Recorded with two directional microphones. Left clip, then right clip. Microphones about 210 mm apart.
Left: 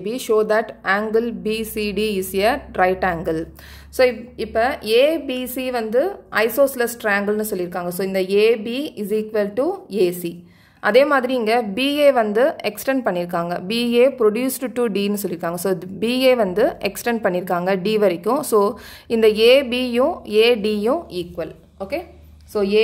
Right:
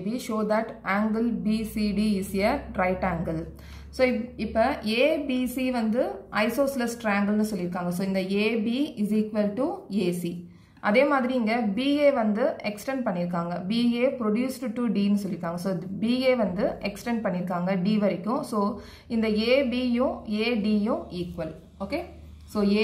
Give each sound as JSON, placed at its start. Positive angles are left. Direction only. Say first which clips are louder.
{"t": 0.0, "sound": "a woman's voice", "louder": "left 11 dB", "side_deg": 40}